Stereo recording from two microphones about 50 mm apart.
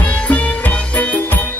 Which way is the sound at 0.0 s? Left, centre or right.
Left.